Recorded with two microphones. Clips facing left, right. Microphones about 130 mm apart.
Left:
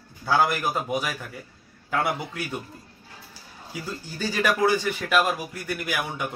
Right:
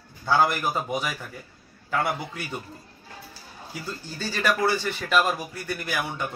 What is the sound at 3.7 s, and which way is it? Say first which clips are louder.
Speech: left 1 dB; 10° left (ahead or behind).